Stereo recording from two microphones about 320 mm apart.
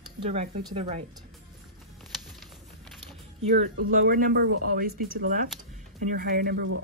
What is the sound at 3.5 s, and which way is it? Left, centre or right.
Speech, right.